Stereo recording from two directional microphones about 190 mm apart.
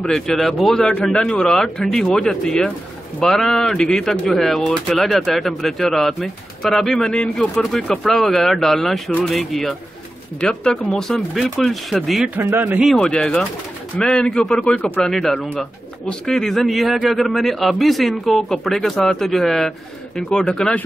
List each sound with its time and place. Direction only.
0.0 s speech: centre (ahead or behind)